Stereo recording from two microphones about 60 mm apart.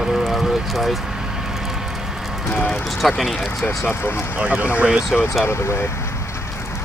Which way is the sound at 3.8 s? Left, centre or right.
Left.